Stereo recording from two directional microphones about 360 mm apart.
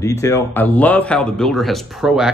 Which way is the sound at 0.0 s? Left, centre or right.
Centre.